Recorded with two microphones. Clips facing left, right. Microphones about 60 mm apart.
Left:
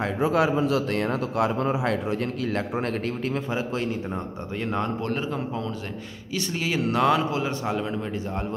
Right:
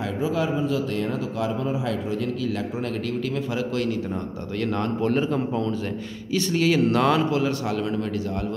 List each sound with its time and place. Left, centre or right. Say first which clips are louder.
0.2 s a man's voice: left 3 dB; left
3.5 s a man's voice: right 2 dB; left
4.6 s a man's voice: right 2 dB; centre
5.0 s a man's voice: right 5 dB; centre